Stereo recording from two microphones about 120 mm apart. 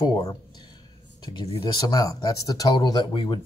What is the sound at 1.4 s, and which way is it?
Speech, 35° left (ahead or behind).